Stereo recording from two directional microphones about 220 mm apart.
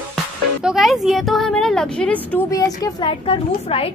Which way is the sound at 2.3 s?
15° left (ahead or behind).